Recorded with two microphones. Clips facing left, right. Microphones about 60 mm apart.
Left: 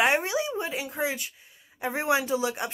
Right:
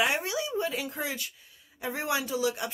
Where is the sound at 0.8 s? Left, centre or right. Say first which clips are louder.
Left 4 dB; centre.